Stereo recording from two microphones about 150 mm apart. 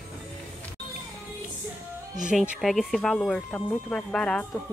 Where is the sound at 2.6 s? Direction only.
Centre (ahead or behind).